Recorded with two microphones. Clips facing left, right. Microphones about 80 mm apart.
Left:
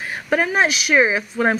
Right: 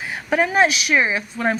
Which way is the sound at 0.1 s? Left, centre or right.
Centre.